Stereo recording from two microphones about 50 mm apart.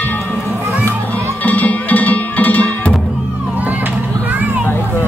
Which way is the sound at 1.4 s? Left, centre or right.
Left.